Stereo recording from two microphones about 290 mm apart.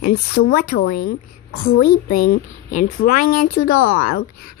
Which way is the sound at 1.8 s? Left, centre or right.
Left.